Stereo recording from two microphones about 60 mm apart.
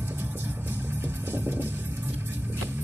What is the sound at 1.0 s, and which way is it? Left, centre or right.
Music, right.